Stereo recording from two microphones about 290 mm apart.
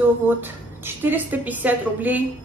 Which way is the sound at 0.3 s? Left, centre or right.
Centre.